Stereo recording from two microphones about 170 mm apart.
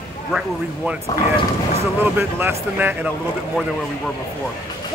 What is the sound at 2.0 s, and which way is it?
A man's voice, 15° right (ahead or behind).